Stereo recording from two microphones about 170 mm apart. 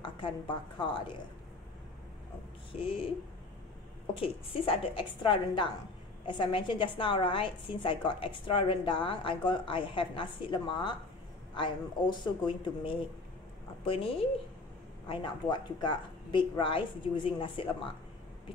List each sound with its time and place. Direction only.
0.0 s a woman's voice: 30° left (ahead or behind)
4.1 s a woman's voice: 30° left (ahead or behind)